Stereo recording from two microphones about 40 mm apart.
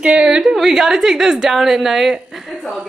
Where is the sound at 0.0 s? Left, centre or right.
Right.